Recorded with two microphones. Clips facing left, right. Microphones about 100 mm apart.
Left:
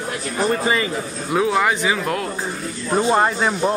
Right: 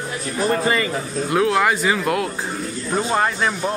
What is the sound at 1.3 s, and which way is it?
Speech, centre (ahead or behind).